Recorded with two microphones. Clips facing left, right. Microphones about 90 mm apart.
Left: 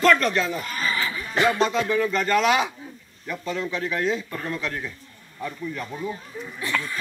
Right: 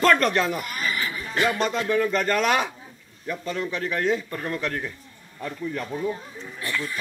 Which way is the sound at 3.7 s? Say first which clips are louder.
Right 2 dB; 55° right (ahead or behind).